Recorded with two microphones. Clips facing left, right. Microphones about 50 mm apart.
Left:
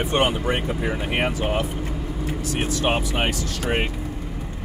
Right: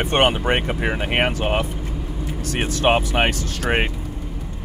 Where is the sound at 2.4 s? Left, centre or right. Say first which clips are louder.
Right 4 dB; right.